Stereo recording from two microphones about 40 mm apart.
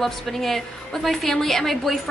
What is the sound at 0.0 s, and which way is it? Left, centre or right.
A woman's voice, centre.